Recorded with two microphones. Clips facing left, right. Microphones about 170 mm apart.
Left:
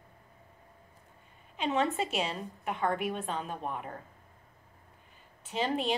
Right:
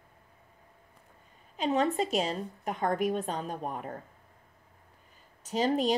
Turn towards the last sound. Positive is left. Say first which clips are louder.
# right 4 dB
turn(degrees=-40)  # may be behind; listen again after turning